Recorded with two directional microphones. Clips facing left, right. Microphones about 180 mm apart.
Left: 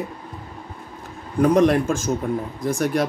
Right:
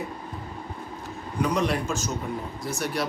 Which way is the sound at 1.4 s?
50° left (ahead or behind).